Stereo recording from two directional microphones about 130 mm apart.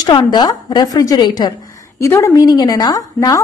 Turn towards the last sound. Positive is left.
turn(degrees=30)  # may be behind; listen again after turning